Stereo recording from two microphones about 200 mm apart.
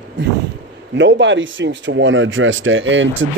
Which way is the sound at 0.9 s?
65° right (ahead or behind).